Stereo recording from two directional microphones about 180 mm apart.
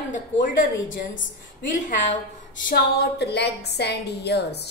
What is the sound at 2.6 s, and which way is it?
A woman's voice, 65° left (ahead or behind).